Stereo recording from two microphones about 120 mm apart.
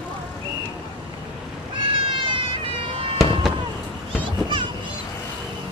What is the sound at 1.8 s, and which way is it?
Sheep, 45° right (ahead or behind).